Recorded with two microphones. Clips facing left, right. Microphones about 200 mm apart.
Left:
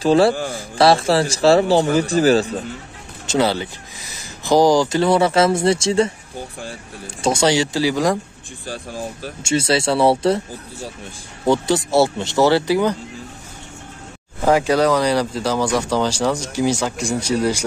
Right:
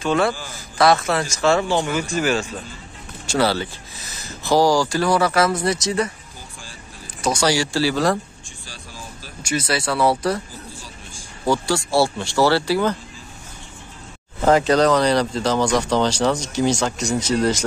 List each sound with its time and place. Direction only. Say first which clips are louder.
0.0 s speech: left 6 dB; 35° left (ahead or behind)
0.3 s speech: left 7 dB; 60° left (ahead or behind)
0.7 s speech: left 3 dB; 30° left (ahead or behind)
3.3 s speech: left 1 dB; 20° left (ahead or behind)
7.2 s speech: left 3 dB; 25° left (ahead or behind)
8.6 s speech: left 12 dB; 55° left (ahead or behind)
9.4 s speech: left 5 dB; 25° left (ahead or behind)
11.4 s speech: left 3 dB; 20° left (ahead or behind)
14.4 s speech: even; 10° left (ahead or behind)